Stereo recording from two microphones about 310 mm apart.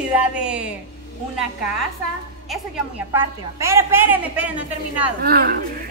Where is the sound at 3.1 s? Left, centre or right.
Centre.